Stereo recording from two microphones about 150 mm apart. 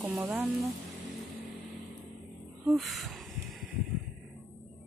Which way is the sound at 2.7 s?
Centre (ahead or behind).